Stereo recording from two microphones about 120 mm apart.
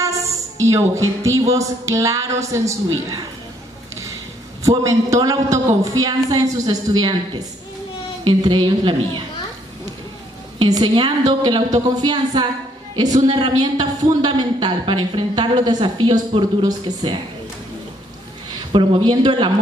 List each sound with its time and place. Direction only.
0.6 s a woman's voice: 25° right (ahead or behind)
4.6 s speech: 25° right (ahead or behind)
10.6 s speech: 40° right (ahead or behind)
18.7 s speech: 45° right (ahead or behind)